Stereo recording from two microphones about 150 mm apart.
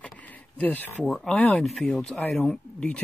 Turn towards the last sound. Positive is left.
turn(degrees=5)  # may be behind; listen again after turning